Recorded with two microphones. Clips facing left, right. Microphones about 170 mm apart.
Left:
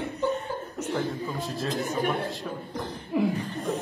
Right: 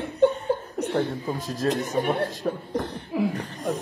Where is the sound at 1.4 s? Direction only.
40° right (ahead or behind).